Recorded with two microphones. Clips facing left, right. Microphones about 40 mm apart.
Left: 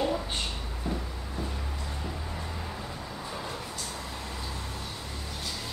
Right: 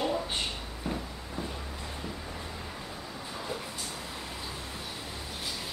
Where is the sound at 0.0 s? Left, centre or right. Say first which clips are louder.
Left 1 dB; centre.